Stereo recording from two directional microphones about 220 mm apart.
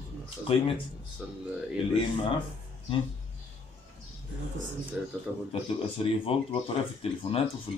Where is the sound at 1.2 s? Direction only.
5° right (ahead or behind).